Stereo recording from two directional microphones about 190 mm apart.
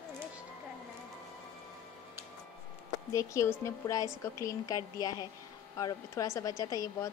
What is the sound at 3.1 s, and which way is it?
A woman's voice, 15° left (ahead or behind).